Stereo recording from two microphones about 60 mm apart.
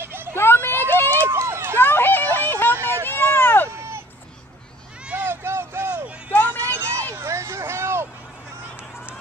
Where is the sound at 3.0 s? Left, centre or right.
Left.